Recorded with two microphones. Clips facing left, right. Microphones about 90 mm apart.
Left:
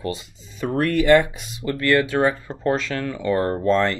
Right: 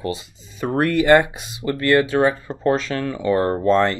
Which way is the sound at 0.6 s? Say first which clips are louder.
Right 2 dB; 40° right (ahead or behind).